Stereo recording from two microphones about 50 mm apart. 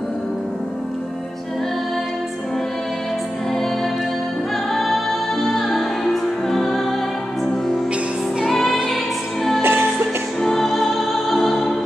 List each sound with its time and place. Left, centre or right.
4.7 s music: centre
8.5 s music: centre
9.6 s music: right
10.4 s music: centre